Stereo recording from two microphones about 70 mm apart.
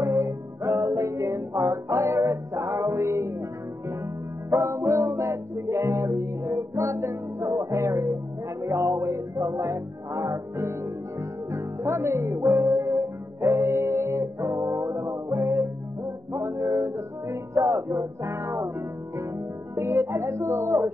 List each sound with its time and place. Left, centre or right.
0.0 s music: right
4.5 s music: right
19.7 s music: right